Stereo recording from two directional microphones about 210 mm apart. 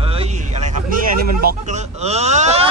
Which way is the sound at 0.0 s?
30° right (ahead or behind).